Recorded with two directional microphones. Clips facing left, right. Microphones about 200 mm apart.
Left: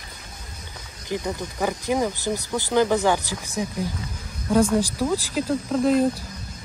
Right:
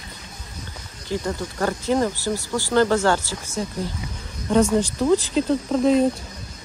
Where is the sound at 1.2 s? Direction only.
10° left (ahead or behind).